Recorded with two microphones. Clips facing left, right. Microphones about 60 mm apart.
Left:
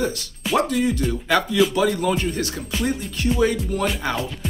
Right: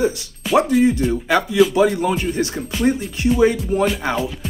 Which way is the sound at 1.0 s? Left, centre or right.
Centre.